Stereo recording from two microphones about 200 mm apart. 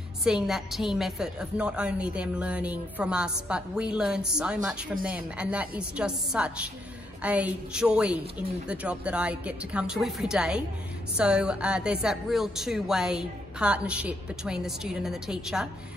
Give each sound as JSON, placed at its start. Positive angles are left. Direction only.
{"t": 0.2, "sound": "a woman's voice", "side_deg": 0}